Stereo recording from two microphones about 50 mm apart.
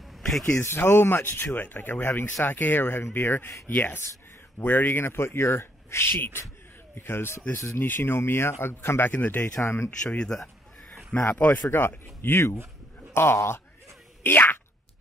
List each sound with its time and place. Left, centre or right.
0.6 s speech: left
7.5 s speech: left
7.8 s speech: left
9.1 s speech: left
9.4 s speech: left
10.1 s speech: centre
11.2 s speech: left
14.2 s speech: left